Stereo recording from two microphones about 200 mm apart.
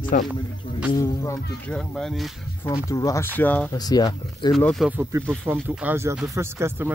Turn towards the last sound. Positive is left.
turn(degrees=-10)  # may be behind; listen again after turning